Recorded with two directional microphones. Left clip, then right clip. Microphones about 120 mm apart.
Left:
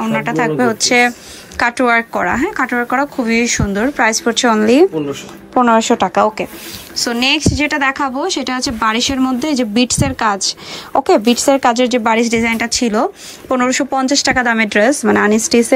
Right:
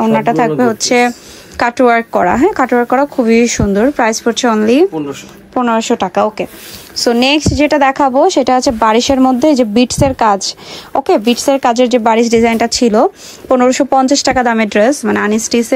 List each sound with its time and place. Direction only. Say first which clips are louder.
0.0 s a woman's voice: right 5 dB; 45° right (ahead or behind)
3.8 s speech: right 1 dB; 35° right (ahead or behind)
5.5 s a woman's voice: left 1 dB; 15° right (ahead or behind)
7.0 s a woman's voice: right 4 dB; 55° right (ahead or behind)
11.1 s speech: right 1 dB; 20° right (ahead or behind)
12.4 s a woman's voice: right 5 dB; 50° right (ahead or behind)
14.9 s speech: even; 15° right (ahead or behind)